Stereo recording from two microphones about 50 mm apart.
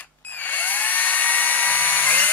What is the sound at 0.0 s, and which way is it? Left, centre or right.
Drill, left.